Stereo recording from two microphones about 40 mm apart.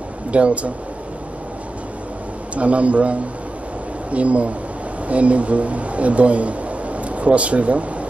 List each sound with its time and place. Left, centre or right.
0.3 s speech: right
2.5 s speech: right